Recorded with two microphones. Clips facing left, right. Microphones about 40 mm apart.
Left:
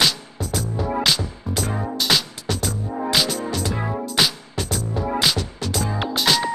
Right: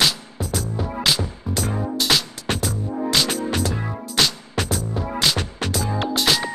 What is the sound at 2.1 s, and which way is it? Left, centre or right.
Music, centre.